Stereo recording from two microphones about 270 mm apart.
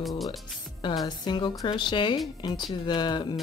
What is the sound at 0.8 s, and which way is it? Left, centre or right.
Speech, centre.